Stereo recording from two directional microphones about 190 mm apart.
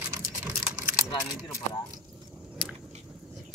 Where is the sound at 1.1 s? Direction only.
20° left (ahead or behind).